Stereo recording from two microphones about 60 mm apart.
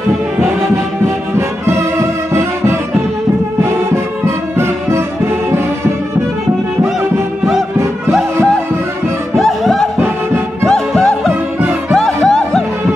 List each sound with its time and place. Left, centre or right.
1.0 s music: right
9.4 s music: centre